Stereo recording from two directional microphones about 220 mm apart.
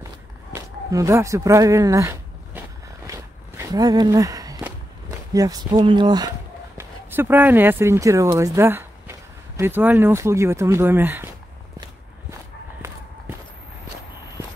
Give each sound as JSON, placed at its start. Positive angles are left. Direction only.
{"t": 0.0, "sound": "a sound", "side_deg": -15}
{"t": 3.1, "sound": "walk", "side_deg": -15}
{"t": 6.8, "sound": "speech", "side_deg": -10}